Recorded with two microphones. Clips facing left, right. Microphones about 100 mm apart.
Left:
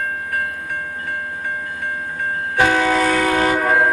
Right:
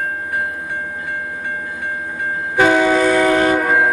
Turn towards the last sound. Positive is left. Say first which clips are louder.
# even
turn(degrees=-5)  # may be behind; listen again after turning